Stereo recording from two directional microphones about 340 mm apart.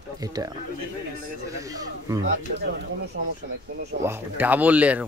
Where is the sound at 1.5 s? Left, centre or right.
Centre.